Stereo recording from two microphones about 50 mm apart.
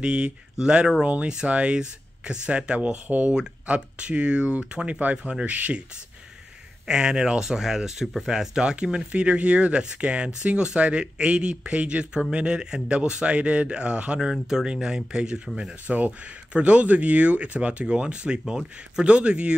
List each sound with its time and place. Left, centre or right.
0.0 s speech: centre
6.9 s speech: centre
14.3 s speech: centre